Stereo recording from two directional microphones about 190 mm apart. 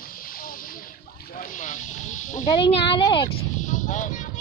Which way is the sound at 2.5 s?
25° left (ahead or behind).